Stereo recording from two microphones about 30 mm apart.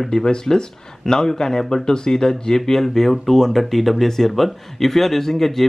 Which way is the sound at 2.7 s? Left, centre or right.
Centre.